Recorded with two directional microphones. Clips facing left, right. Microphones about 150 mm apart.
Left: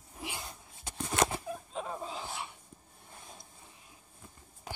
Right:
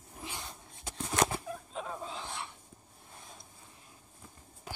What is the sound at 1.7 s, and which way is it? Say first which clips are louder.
Dog: left 1 dB; 5° left (ahead or behind).